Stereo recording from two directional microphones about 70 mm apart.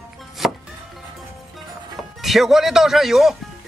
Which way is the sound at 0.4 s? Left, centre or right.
Centre.